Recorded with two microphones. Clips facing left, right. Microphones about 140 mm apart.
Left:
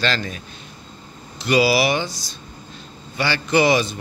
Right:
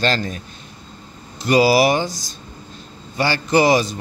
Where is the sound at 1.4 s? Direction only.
40° right (ahead or behind).